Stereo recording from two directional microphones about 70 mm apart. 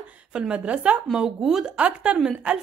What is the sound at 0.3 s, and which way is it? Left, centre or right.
Speech, centre.